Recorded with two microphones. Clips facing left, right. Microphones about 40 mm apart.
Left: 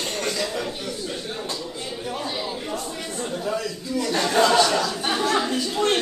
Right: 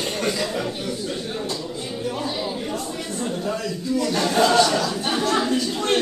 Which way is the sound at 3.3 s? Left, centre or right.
Centre.